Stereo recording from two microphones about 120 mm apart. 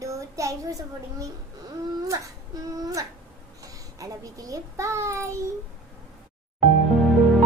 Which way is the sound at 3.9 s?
30° right (ahead or behind).